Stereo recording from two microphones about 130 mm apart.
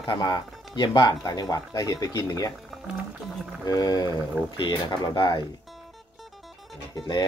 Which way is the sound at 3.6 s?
30° left (ahead or behind).